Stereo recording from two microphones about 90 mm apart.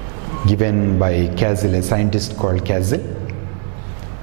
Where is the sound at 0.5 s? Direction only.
10° right (ahead or behind).